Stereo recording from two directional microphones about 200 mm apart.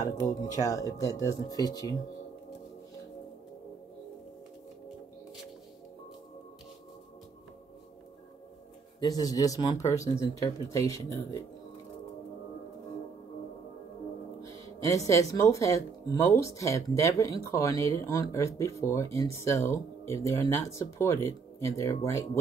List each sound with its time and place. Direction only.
0.0 s speech: 15° left (ahead or behind)
9.0 s speech: 20° left (ahead or behind)
14.4 s music: 15° left (ahead or behind)
15.0 s speech: 15° left (ahead or behind)